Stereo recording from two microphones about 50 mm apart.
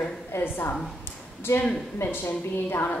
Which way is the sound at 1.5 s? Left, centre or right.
Left.